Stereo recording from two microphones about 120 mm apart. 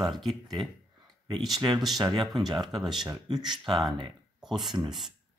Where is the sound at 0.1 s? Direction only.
Centre (ahead or behind).